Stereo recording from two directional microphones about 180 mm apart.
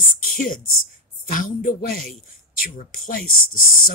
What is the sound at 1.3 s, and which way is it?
Speech, 50° left (ahead or behind).